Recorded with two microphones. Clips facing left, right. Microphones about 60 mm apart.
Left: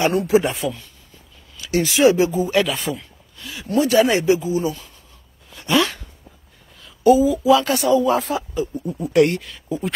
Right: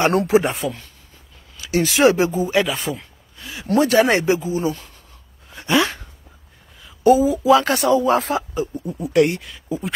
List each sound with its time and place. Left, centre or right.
0.3 s speech: right
1.6 s a sound: right
1.9 s speech: right
2.2 s speech: right
2.5 s a sound: right
3.6 s speech: right
3.9 s speech: right
5.5 s a sound: right
7.0 s speech: right
8.2 s speech: right
8.5 s speech: right
9.1 s speech: centre
9.4 s speech: centre